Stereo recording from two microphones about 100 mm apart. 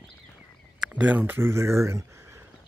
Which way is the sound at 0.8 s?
15° right (ahead or behind).